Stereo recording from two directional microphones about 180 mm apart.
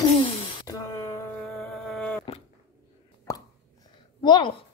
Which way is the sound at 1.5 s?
Centre (ahead or behind).